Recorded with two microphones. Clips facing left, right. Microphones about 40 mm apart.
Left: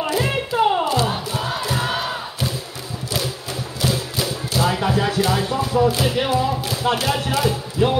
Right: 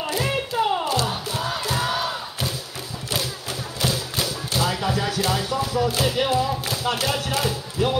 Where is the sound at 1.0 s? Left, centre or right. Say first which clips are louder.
Left 3 dB; centre.